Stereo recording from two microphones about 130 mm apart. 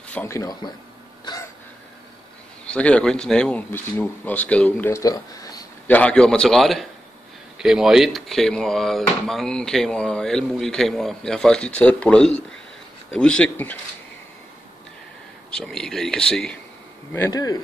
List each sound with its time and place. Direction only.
0.1 s a man's voice: 20° left (ahead or behind)
1.3 s a sound: 35° left (ahead or behind)
2.6 s speech: 10° left (ahead or behind)
5.0 s speech: 30° left (ahead or behind)
5.9 s speech: 10° left (ahead or behind)
15.5 s speech: 5° left (ahead or behind)
17.3 s a man's voice: 30° left (ahead or behind)